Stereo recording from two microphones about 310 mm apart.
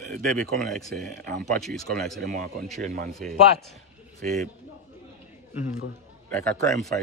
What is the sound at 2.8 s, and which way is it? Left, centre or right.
Speech, right.